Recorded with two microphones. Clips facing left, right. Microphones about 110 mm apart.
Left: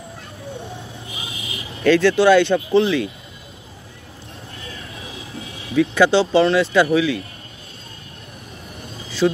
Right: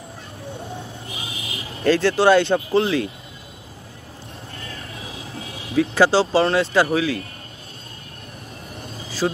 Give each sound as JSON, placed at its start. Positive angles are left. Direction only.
{"t": 1.8, "sound": "speech", "side_deg": -30}
{"t": 5.8, "sound": "speech", "side_deg": -35}